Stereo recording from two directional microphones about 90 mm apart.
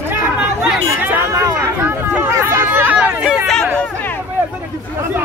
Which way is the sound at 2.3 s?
35° right (ahead or behind).